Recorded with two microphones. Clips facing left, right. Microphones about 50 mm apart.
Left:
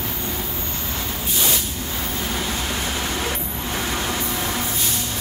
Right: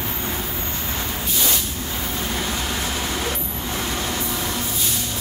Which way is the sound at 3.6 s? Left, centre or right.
Centre.